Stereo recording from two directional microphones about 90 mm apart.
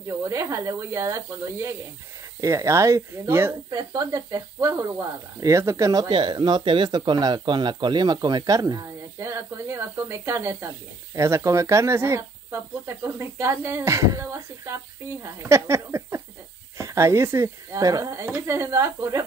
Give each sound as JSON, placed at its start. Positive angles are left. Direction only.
{"t": 0.2, "sound": "speech", "side_deg": -35}
{"t": 3.7, "sound": "speech", "side_deg": -45}
{"t": 6.0, "sound": "speech", "side_deg": -65}
{"t": 8.8, "sound": "speech", "side_deg": -30}